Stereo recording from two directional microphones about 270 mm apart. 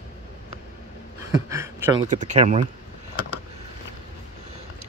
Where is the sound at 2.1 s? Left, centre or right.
Right.